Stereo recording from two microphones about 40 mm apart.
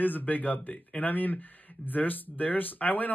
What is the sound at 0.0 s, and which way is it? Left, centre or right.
Speech, left.